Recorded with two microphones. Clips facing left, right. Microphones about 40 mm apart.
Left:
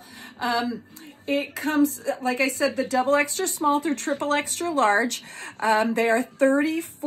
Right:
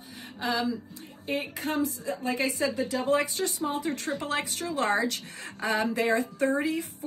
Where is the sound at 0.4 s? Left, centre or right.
Left.